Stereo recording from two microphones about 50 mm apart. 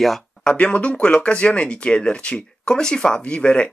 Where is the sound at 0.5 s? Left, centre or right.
Left.